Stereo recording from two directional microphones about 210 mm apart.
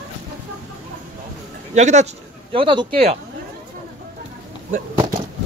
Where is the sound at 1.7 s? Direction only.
35° right (ahead or behind).